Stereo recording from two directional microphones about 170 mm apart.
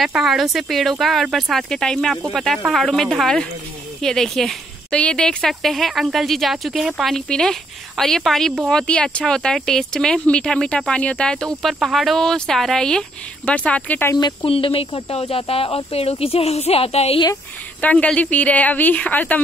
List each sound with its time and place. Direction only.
0.0 s a woman's voice: centre (ahead or behind)
14.2 s speech: 30° left (ahead or behind)
17.7 s a woman's voice: 5° left (ahead or behind)